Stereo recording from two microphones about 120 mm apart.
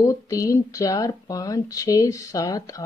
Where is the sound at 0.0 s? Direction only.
30° left (ahead or behind).